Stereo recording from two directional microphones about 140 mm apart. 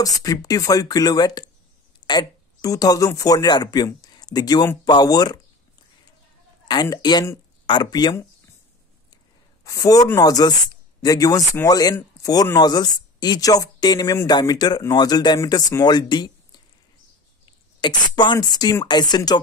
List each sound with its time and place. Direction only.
0.0 s speech: 25° left (ahead or behind)
6.7 s speech: 30° left (ahead or behind)
9.7 s speech: 25° left (ahead or behind)
18.1 s speech: 30° left (ahead or behind)